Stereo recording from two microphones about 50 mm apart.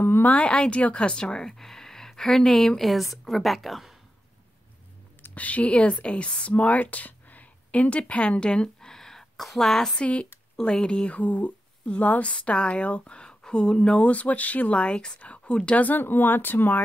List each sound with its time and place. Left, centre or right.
0.0 s a sound: left
0.3 s a woman's voice: left
2.8 s a woman's voice: centre
5.3 s speech: left
8.9 s a sound: centre
9.9 s speech: left
11.1 s speech: left
13.9 s speech: left
15.8 s speech: left